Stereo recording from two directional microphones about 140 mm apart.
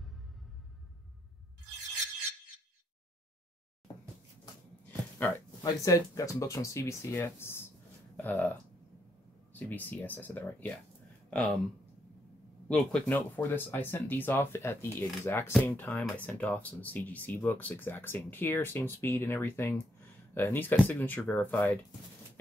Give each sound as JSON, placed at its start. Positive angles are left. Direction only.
{"t": 5.6, "sound": "speech", "side_deg": 25}
{"t": 12.6, "sound": "speech", "side_deg": 5}